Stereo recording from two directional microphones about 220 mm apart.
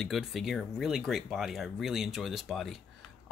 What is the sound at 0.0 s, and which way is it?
Speech, centre (ahead or behind).